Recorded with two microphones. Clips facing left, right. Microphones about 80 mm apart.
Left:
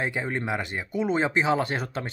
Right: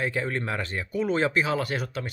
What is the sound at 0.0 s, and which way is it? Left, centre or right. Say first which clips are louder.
Speech: even; centre.